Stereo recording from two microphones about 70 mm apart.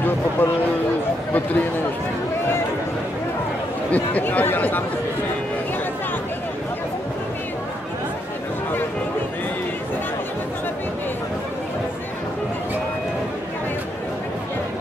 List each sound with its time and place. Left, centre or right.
0.4 s a man's voice: left
3.9 s speech: left